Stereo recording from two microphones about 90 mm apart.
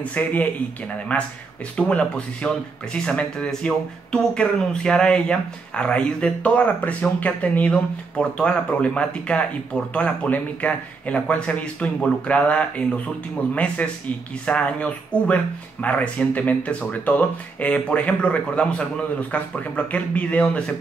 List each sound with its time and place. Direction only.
0.0 s speech: 15° left (ahead or behind)